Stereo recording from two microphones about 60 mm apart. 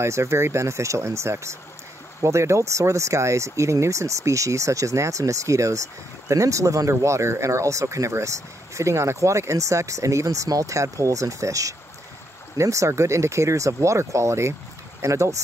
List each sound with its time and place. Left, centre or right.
0.0 s speech: right